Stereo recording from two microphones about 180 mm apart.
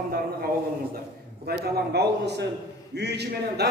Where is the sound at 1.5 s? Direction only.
65° right (ahead or behind).